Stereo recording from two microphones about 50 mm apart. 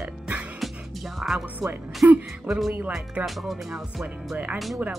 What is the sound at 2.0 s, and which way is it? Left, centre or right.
Speech, right.